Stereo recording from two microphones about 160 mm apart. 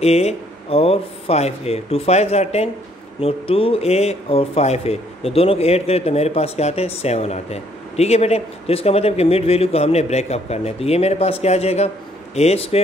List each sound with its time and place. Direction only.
0.0 s speech: 40° left (ahead or behind)